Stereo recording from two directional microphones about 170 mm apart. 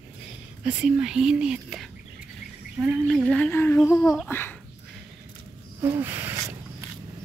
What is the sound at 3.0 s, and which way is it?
A child's voice, 5° left (ahead or behind).